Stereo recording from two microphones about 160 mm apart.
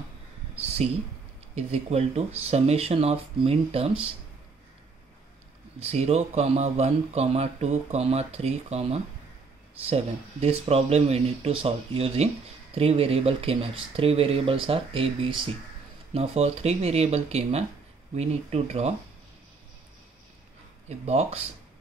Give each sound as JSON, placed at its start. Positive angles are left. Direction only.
{"t": 0.8, "sound": "speech", "side_deg": -40}
{"t": 5.8, "sound": "speech", "side_deg": -40}
{"t": 21.0, "sound": "speech", "side_deg": -40}